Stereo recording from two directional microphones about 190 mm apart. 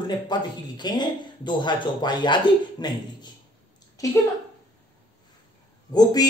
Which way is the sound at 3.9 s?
15° left (ahead or behind).